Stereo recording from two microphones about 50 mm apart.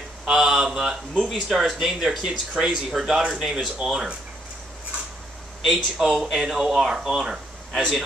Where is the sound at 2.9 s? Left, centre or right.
Centre.